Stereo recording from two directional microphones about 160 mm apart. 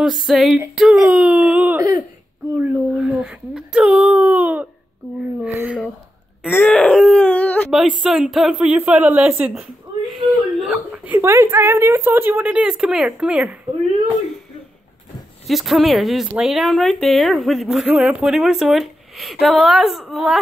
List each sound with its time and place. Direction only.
0.0 s speech: centre (ahead or behind)
1.8 s a sound: 25° right (ahead or behind)
2.5 s a sound: 10° right (ahead or behind)
6.5 s wail: 10° left (ahead or behind)
8.0 s a woman's voice: 5° right (ahead or behind)
11.1 s a woman's voice: 15° right (ahead or behind)
15.4 s speech: centre (ahead or behind)